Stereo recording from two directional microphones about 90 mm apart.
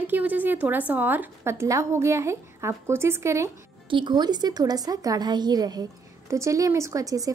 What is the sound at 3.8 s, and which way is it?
A woman's voice, 60° right (ahead or behind).